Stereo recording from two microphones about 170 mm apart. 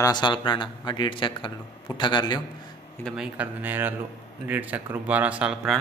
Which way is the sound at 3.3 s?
10° right (ahead or behind).